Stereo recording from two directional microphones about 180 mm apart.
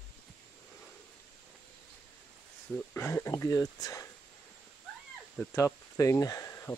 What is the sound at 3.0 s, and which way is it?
Speech, 15° left (ahead or behind).